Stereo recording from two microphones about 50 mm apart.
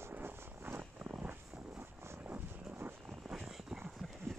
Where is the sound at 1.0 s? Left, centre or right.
Right.